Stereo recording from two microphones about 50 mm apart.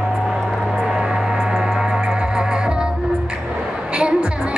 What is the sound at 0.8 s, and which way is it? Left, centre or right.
Music, centre.